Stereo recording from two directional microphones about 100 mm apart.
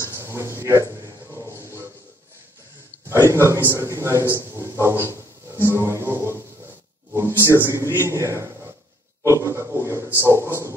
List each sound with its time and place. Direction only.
0.2 s a sound: 25° right (ahead or behind)
3.1 s a man's voice: 30° right (ahead or behind)
7.2 s a sound: 25° right (ahead or behind)
7.9 s a man's voice: 25° right (ahead or behind)
9.2 s pig: 30° right (ahead or behind)
10.2 s a man's voice: 30° right (ahead or behind)